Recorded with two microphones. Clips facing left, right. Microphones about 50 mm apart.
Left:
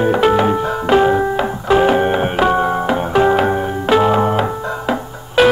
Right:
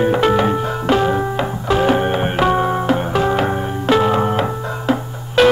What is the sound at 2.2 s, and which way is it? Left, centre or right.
Music, centre.